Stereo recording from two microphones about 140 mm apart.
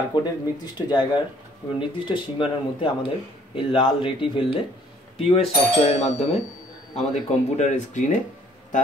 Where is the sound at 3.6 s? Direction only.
40° left (ahead or behind).